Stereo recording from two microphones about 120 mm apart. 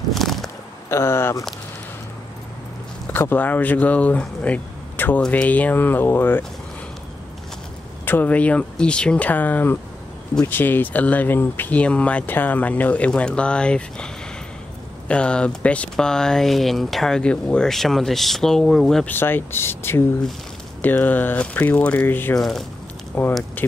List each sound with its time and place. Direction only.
0.1 s a sound: centre (ahead or behind)
0.8 s speech: 20° left (ahead or behind)
3.1 s speech: 15° left (ahead or behind)
8.0 s speech: 15° left (ahead or behind)
19.0 s speech: 15° left (ahead or behind)
22.4 s speech: centre (ahead or behind)
23.1 s speech: 15° left (ahead or behind)